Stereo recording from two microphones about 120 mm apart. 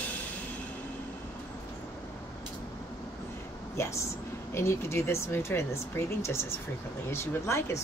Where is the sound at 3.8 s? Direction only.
25° left (ahead or behind).